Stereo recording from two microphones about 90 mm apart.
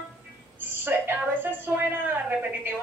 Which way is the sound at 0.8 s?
25° right (ahead or behind).